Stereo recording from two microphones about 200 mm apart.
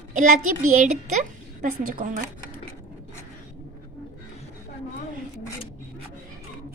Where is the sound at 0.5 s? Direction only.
40° right (ahead or behind).